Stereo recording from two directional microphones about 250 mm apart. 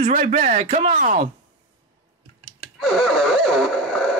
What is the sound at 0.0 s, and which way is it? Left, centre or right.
A man's voice, right.